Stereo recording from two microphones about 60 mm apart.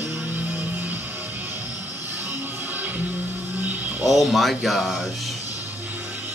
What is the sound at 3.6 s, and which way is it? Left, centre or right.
Music, right.